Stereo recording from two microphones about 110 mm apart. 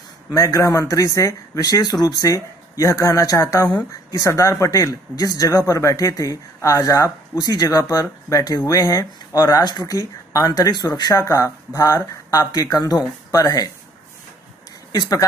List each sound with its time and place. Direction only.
0.3 s speech: 30° left (ahead or behind)
14.9 s speech: 35° left (ahead or behind)